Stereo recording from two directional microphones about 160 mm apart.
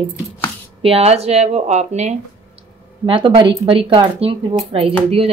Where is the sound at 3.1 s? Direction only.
30° right (ahead or behind).